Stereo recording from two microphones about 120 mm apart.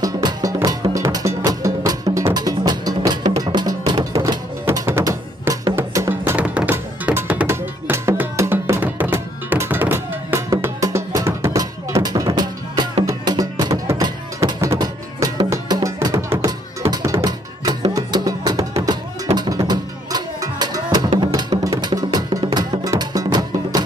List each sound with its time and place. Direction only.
0.0 s music: 30° right (ahead or behind)
4.6 s music: 20° right (ahead or behind); by 23.8 s 35° right (ahead or behind)